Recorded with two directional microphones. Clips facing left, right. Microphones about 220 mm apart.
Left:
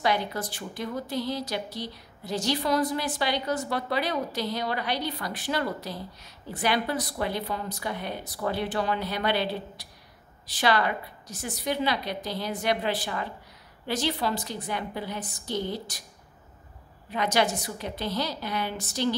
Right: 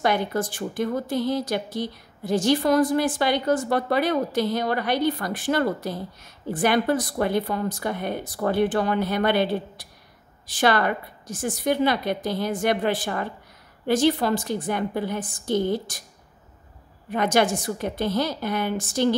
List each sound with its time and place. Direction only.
0.0 s a woman's voice: 50° right (ahead or behind)
17.1 s a woman's voice: 50° right (ahead or behind)